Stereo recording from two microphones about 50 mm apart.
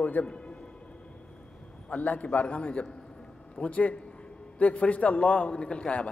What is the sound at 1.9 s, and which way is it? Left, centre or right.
A man's voice, left.